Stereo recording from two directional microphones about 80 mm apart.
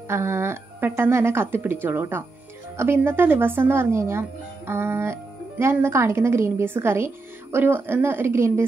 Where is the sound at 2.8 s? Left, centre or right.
Right.